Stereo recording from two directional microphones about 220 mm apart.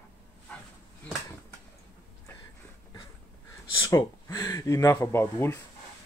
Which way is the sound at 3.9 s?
15° left (ahead or behind).